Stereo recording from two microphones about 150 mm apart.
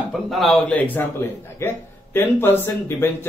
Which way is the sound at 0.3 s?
Centre (ahead or behind).